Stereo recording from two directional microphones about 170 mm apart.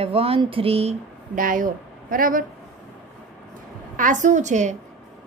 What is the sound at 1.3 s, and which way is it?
Speech, 55° right (ahead or behind).